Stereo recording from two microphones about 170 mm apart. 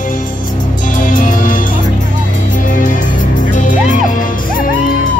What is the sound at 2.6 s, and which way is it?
Music, 50° left (ahead or behind).